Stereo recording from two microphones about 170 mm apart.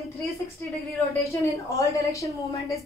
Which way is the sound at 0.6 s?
15° left (ahead or behind).